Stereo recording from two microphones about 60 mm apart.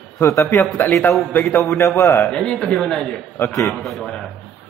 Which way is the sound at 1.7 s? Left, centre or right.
Left.